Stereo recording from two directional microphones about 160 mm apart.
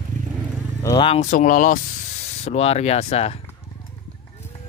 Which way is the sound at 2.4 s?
40° left (ahead or behind).